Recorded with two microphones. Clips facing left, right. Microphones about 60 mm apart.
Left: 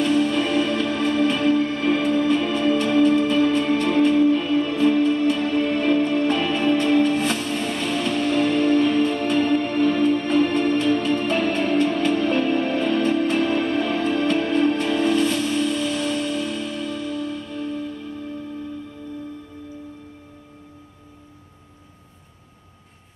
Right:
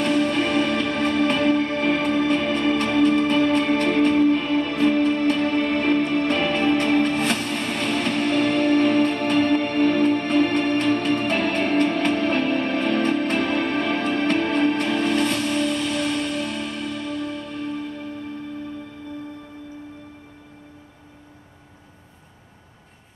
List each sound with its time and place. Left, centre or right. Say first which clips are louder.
0.0 s music: left 1 dB; right